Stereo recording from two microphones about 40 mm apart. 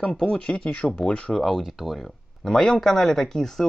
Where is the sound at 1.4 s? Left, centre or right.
Centre.